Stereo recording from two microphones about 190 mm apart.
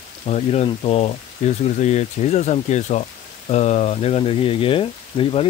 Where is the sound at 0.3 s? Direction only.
35° left (ahead or behind).